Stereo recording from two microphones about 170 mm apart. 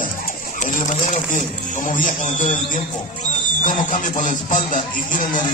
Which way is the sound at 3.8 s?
50° left (ahead or behind).